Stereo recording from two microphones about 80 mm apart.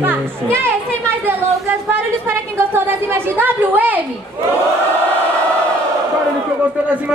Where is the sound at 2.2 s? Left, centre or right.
Right.